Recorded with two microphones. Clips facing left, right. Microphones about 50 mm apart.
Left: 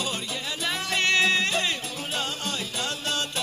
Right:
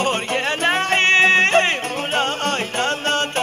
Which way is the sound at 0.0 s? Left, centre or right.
Right.